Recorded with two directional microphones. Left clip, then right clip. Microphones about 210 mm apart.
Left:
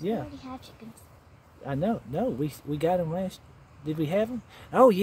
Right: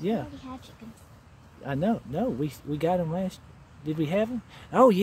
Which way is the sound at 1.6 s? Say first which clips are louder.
Right 1 dB; 5° right (ahead or behind).